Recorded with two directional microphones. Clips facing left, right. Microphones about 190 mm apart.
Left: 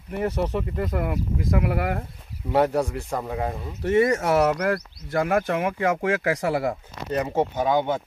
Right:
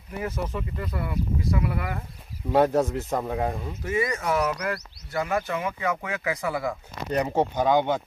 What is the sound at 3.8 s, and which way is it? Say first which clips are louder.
Speech: left 7 dB; 70° left (ahead or behind).